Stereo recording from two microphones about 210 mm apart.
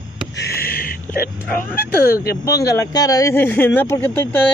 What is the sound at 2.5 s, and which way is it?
Speech, 15° left (ahead or behind).